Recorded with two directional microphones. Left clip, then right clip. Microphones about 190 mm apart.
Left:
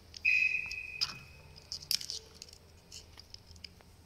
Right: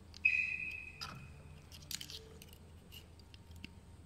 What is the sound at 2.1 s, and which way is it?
Squish, 70° right (ahead or behind).